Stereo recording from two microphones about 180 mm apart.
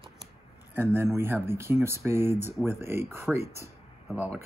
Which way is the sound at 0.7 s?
15° right (ahead or behind).